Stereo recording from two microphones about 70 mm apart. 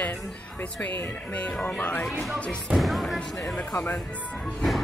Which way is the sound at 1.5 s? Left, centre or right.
Centre.